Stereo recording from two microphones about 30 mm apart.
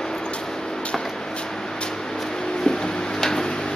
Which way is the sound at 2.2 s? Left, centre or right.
Left.